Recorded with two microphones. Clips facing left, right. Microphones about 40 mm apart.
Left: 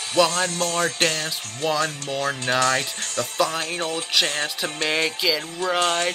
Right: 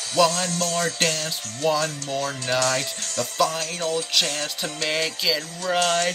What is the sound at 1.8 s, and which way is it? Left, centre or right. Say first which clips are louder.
Speech: left 2 dB; left.